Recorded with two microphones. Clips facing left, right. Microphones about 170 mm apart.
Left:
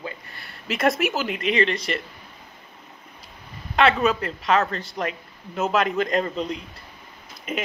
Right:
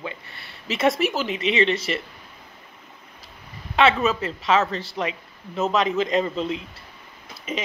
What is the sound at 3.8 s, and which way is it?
Speech, centre (ahead or behind).